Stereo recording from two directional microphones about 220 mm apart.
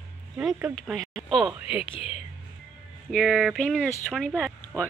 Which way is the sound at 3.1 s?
Centre (ahead or behind).